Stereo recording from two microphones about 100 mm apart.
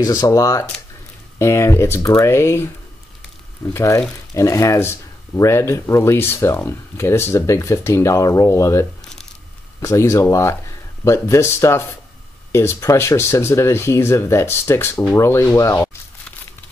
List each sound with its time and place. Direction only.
0.0 s speech: 40° left (ahead or behind)